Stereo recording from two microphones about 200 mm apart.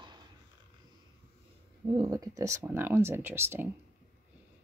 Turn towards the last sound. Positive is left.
turn(degrees=-10)  # may be behind; listen again after turning